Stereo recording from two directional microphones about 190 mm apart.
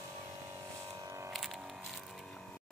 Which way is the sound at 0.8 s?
15° right (ahead or behind).